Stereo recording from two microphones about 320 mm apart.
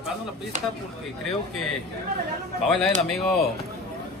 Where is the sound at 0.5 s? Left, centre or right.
Right.